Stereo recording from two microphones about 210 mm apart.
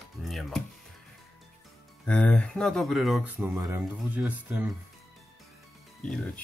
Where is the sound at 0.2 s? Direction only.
Centre (ahead or behind).